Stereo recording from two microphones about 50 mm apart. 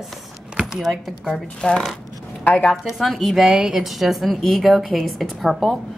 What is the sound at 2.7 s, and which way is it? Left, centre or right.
Speech, centre.